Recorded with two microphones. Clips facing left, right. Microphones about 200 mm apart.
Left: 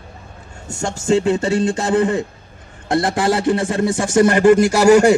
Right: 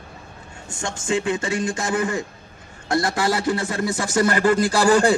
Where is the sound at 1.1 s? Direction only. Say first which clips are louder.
Left 7 dB; 35° left (ahead or behind).